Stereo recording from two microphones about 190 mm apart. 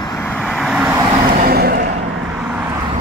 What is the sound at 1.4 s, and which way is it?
Vehicle, 55° right (ahead or behind).